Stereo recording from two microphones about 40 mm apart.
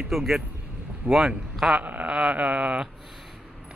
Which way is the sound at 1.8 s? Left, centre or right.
Right.